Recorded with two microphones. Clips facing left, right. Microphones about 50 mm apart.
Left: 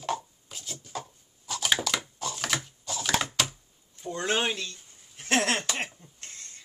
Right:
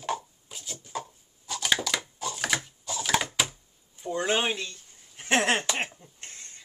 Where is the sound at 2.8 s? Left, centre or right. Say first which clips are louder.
Even; centre.